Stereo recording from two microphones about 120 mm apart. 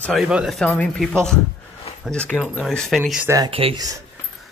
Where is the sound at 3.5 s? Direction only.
50° right (ahead or behind).